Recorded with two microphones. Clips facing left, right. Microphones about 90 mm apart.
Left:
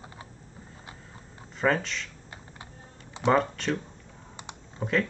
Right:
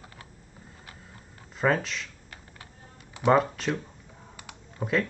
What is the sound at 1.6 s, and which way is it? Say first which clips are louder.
Speech: even; 5° right (ahead or behind).